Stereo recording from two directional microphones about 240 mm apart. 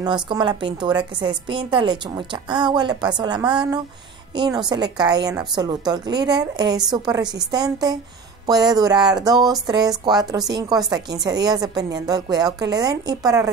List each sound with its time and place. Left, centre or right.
0.0 s a woman's voice: centre